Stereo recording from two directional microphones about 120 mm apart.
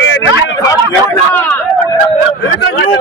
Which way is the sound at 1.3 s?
20° left (ahead or behind).